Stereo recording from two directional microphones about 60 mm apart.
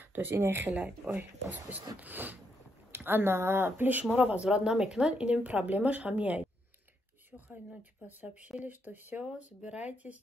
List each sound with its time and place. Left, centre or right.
0.1 s speech: right
0.4 s speech: right
0.7 s speech: right
4.5 s speech: centre; by 9.2 s right
9.2 s speech: centre